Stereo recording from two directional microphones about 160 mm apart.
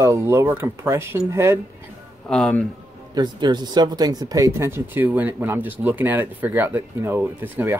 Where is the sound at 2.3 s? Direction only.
5° left (ahead or behind).